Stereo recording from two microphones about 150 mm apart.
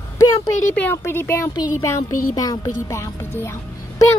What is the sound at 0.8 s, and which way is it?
Speech, 15° left (ahead or behind).